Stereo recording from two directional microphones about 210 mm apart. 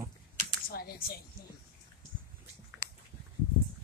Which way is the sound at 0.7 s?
45° left (ahead or behind).